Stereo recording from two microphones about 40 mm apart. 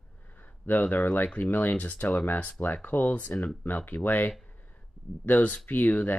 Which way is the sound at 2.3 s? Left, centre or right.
Left.